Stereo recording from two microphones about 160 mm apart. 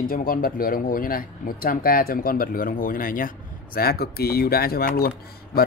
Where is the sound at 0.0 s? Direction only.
60° left (ahead or behind).